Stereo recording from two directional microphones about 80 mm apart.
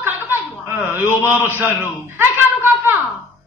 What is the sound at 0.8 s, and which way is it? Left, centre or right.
A woman's voice, right.